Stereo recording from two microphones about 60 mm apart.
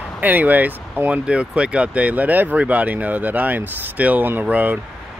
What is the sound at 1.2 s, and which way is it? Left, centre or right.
Speech, centre.